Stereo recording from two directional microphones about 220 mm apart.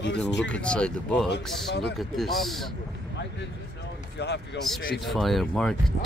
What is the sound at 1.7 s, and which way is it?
Speech, 50° left (ahead or behind).